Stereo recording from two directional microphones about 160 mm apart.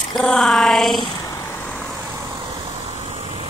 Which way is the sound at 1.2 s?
15° left (ahead or behind).